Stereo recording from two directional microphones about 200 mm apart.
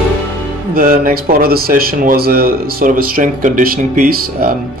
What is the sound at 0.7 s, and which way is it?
Speech, 45° right (ahead or behind).